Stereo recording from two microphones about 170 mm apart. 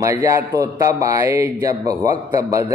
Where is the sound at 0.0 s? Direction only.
20° right (ahead or behind).